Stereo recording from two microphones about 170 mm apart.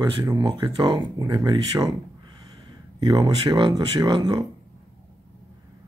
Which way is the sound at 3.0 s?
20° right (ahead or behind).